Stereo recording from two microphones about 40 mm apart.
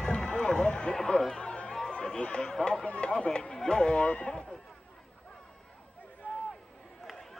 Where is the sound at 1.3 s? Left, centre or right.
Left.